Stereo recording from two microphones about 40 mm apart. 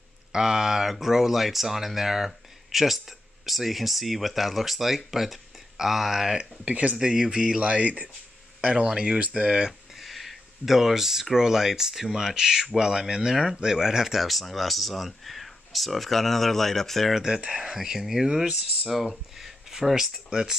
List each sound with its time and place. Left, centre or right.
0.3 s speech: centre
6.6 s speech: right
7.0 s speech: centre
7.6 s speech: right
9.7 s a sound: centre
11.3 s speech: centre
14.1 s speech: centre
17.1 s speech: centre
18.9 s speech: centre